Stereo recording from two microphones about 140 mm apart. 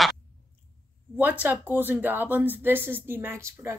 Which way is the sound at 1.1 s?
10° right (ahead or behind).